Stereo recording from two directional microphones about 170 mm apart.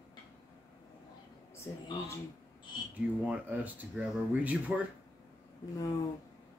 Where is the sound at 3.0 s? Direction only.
10° right (ahead or behind).